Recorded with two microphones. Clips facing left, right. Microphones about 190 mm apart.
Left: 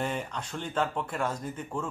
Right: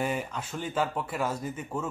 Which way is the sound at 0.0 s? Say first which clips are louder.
Right 2 dB; 5° right (ahead or behind).